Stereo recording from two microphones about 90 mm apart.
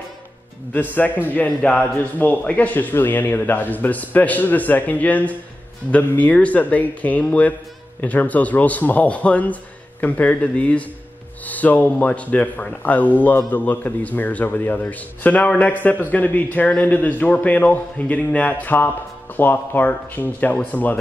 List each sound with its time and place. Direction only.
0.7 s a man's voice: 20° left (ahead or behind)